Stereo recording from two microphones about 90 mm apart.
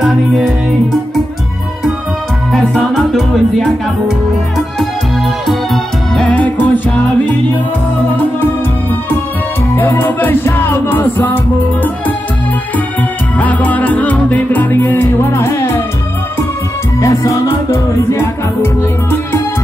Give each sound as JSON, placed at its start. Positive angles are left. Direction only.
{"t": 0.0, "sound": "music", "side_deg": -5}
{"t": 2.5, "sound": "music", "side_deg": 0}
{"t": 6.2, "sound": "music", "side_deg": 15}
{"t": 9.8, "sound": "music", "side_deg": 20}
{"t": 13.4, "sound": "music", "side_deg": 15}
{"t": 17.0, "sound": "music", "side_deg": 35}